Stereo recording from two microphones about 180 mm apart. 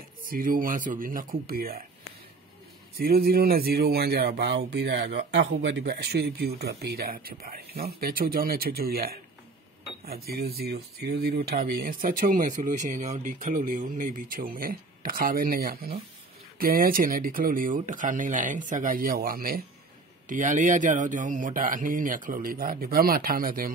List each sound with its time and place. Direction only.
0.2 s speech: 50° right (ahead or behind)
3.0 s speech: 55° right (ahead or behind)